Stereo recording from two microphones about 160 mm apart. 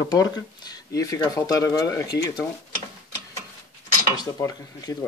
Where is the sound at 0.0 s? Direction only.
25° left (ahead or behind).